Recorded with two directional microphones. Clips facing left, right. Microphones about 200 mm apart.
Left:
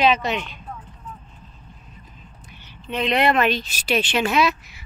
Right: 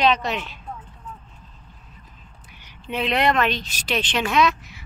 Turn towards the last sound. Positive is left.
turn(degrees=10)  # may be behind; listen again after turning